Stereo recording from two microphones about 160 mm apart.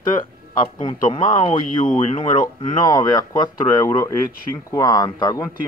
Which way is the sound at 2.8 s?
25° left (ahead or behind).